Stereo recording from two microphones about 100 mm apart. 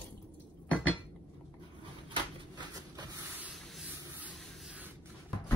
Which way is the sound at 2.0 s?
45° right (ahead or behind).